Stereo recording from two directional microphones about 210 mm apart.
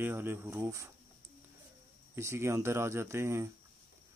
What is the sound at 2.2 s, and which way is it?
Speech, 15° right (ahead or behind).